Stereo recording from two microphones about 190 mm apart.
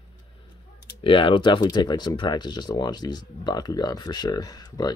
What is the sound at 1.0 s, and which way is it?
Speech, 25° left (ahead or behind).